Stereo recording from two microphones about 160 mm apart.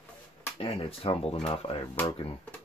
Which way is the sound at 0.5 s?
35° left (ahead or behind).